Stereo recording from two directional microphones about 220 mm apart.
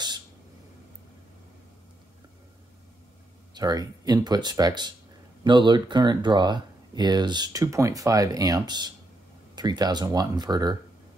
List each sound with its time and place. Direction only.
3.5 s speech: 15° right (ahead or behind)